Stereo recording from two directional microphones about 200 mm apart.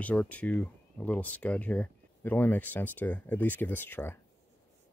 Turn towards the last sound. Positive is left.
turn(degrees=10)  # may be behind; listen again after turning